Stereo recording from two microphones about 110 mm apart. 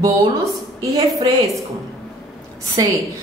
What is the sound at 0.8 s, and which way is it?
Speech, 30° right (ahead or behind).